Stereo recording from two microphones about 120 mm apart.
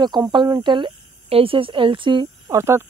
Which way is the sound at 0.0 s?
35° right (ahead or behind).